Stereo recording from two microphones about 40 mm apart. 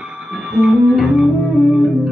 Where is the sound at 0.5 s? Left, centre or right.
Right.